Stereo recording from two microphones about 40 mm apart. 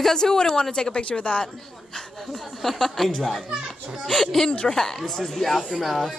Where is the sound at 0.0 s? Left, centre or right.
Centre.